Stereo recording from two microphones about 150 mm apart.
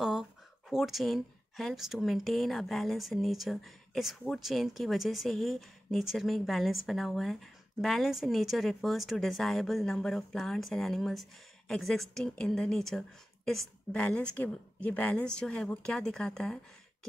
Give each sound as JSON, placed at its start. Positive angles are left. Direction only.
{"t": 0.0, "sound": "speech", "side_deg": 0}